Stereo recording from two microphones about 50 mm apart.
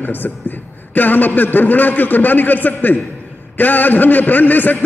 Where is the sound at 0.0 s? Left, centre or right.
Left.